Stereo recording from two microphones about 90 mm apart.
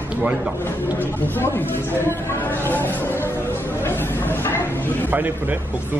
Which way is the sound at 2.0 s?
25° left (ahead or behind).